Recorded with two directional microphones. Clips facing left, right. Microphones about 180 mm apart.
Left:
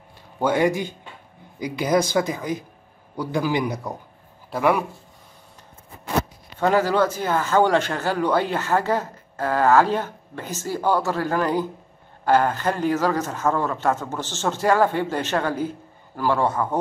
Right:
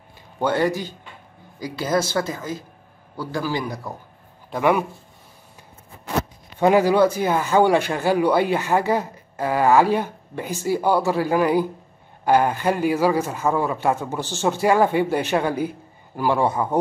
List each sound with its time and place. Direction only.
0.4 s speech: 15° left (ahead or behind)
4.5 s speech: centre (ahead or behind)
6.6 s speech: 15° right (ahead or behind)